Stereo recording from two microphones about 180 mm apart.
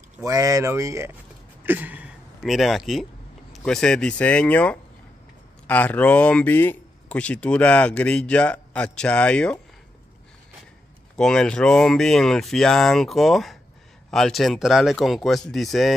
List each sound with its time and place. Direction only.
0.2 s speech: 20° right (ahead or behind); by 9.6 s 5° left (ahead or behind)
11.1 s speech: 5° left (ahead or behind)